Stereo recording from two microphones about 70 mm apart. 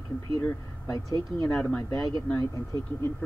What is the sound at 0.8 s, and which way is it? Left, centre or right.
Speech, left.